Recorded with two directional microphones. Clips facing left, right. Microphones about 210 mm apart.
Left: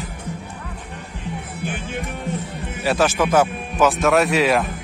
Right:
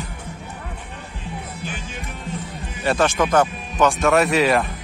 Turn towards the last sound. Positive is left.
turn(degrees=0)  # may be behind; listen again after turning